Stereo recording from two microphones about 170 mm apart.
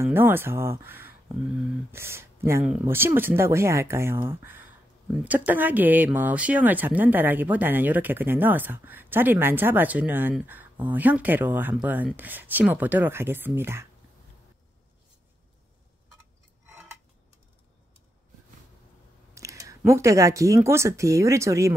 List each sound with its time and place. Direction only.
0.0 s speech: 10° right (ahead or behind)
19.3 s speech: 20° right (ahead or behind)